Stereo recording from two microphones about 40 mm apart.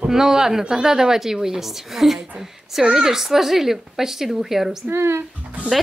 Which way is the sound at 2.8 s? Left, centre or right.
Centre.